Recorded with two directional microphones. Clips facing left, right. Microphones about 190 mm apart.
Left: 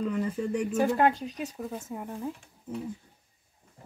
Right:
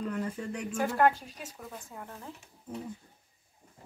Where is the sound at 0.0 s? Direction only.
5° left (ahead or behind).